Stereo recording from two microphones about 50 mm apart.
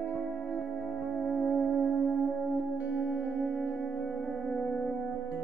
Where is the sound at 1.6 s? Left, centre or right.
Centre.